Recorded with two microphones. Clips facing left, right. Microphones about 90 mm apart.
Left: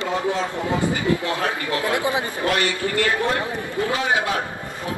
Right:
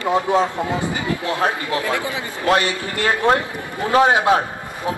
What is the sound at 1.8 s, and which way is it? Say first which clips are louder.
Speech: left 1 dB; 20° left (ahead or behind).